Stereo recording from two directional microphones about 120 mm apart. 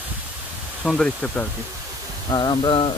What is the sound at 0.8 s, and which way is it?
Speech, 5° left (ahead or behind).